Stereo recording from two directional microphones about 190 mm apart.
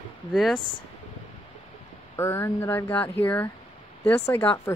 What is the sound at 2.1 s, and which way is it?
Speech, 15° left (ahead or behind).